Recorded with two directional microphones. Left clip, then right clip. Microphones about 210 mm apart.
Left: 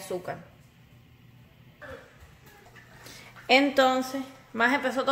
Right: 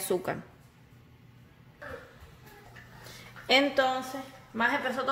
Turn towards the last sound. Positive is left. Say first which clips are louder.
# left 3 dB
turn(degrees=50)  # may be behind; listen again after turning